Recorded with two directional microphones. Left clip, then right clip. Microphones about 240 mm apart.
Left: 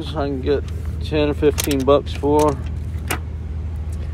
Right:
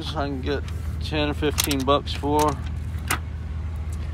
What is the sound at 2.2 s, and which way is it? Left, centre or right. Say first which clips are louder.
Speech: left 6 dB; centre.